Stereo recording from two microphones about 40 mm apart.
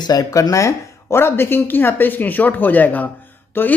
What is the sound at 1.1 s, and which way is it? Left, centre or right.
Speech, left.